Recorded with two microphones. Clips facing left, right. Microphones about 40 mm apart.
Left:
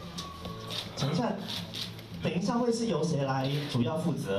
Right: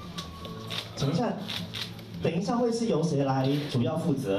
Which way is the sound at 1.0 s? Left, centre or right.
Left.